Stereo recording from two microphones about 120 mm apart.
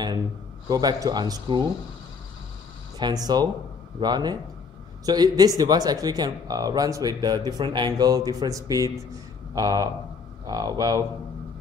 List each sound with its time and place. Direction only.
0.7 s speech: 35° right (ahead or behind)
3.0 s speech: 35° right (ahead or behind)